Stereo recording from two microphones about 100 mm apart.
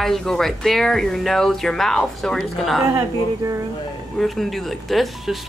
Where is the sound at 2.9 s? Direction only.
30° right (ahead or behind).